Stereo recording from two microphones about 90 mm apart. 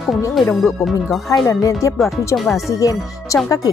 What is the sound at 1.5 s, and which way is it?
Speech, 35° left (ahead or behind).